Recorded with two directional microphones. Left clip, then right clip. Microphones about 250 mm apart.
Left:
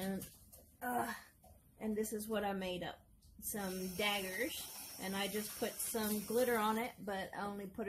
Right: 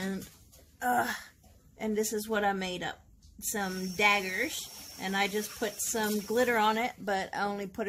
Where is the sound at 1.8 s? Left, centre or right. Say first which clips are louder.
Right 9 dB; right.